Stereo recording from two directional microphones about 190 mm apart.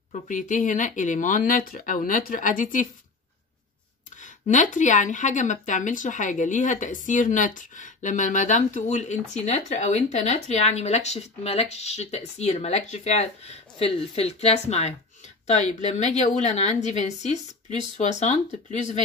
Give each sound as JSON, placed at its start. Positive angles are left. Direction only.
{"t": 0.1, "sound": "speech", "side_deg": 40}
{"t": 4.2, "sound": "a woman's voice", "side_deg": 40}